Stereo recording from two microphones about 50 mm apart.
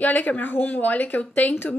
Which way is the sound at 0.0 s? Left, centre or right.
Left.